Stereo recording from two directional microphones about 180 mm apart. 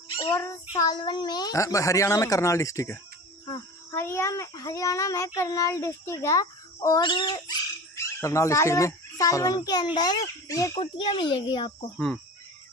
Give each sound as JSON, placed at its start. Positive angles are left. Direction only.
{"t": 0.1, "sound": "child singing", "side_deg": 25}
{"t": 0.4, "sound": "a child's voice", "side_deg": 15}